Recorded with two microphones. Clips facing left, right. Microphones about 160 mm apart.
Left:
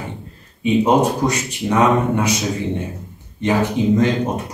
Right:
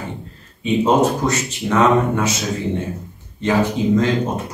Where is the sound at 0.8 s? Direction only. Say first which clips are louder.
Right 2 dB; 15° left (ahead or behind).